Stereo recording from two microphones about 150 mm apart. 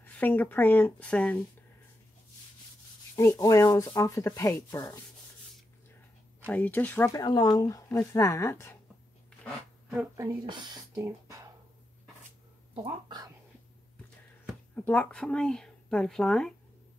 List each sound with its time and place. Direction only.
0.0 s speech: 10° left (ahead or behind)
3.2 s speech: 20° left (ahead or behind)
6.4 s speech: 10° left (ahead or behind)
7.2 s speech: 30° left (ahead or behind)
9.4 s dog: centre (ahead or behind)
10.4 s speech: 30° right (ahead or behind)
12.7 s speech: 30° right (ahead or behind)
14.8 s speech: 10° left (ahead or behind)